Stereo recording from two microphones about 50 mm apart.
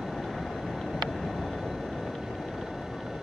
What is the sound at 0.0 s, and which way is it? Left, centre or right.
Vehicle, centre.